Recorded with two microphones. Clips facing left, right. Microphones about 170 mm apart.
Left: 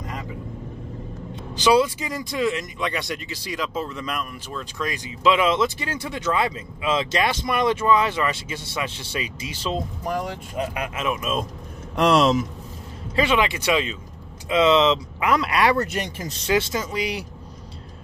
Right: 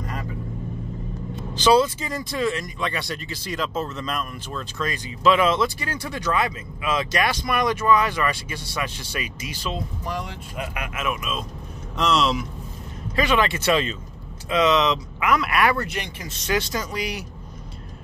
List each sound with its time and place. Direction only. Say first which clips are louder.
0.0 s vehicle: right 1 dB; 20° left (ahead or behind)
1.5 s speech: even; 10° left (ahead or behind); by 9.8 s 25° left (ahead or behind)
10.0 s speech: left 4 dB; 45° left (ahead or behind)
12.0 s speech: left 4 dB; 55° left (ahead or behind)
13.1 s speech: left 1 dB; 25° left (ahead or behind)
14.5 s speech: left 2 dB; 25° left (ahead or behind)
15.8 s speech: left 4 dB; 40° left (ahead or behind)
16.4 s speech: left 2 dB; 25° left (ahead or behind)